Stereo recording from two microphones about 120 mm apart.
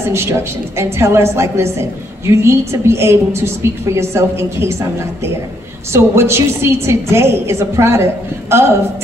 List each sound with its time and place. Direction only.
0.1 s a woman's voice: 20° right (ahead or behind)
5.9 s a woman's voice: 20° right (ahead or behind)